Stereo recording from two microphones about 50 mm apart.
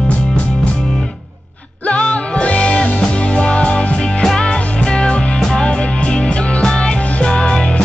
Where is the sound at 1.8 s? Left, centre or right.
Left.